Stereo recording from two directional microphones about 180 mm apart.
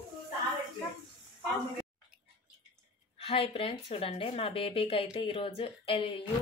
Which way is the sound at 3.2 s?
35° left (ahead or behind).